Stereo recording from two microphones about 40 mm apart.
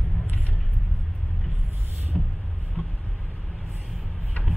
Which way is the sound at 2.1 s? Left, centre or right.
Centre.